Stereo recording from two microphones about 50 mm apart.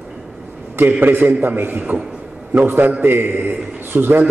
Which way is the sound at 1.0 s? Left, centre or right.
Right.